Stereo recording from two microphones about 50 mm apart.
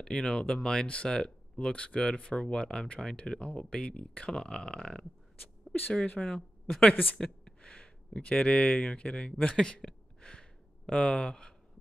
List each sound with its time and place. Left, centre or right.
0.0 s speech: centre
1.7 s speech: left
6.9 s speech: left
7.2 s a sound: centre
8.7 s speech: centre